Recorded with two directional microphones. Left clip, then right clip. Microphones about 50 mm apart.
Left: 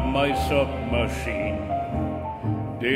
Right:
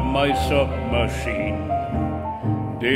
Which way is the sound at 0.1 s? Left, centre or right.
Centre.